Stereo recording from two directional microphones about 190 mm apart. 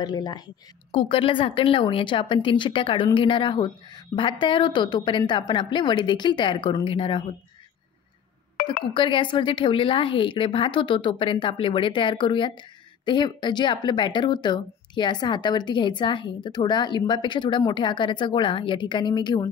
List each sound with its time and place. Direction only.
0.0 s speech: 20° left (ahead or behind)
8.9 s speech: 25° left (ahead or behind)